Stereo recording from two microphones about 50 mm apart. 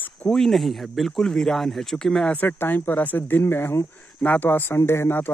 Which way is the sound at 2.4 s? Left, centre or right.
Left.